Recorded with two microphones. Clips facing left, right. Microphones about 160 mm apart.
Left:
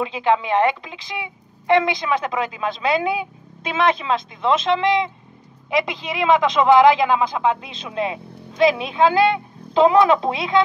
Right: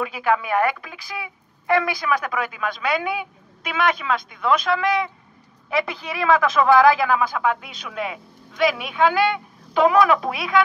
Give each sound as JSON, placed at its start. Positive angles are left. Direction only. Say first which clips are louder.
{"t": 0.0, "sound": "a woman's voice", "louder": "left 2 dB", "side_deg": 25}